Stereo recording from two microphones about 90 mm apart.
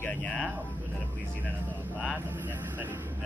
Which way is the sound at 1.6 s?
20° right (ahead or behind).